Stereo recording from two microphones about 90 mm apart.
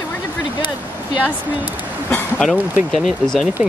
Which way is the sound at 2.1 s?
10° left (ahead or behind).